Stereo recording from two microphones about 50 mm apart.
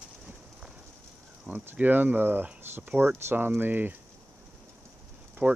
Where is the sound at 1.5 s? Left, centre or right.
Right.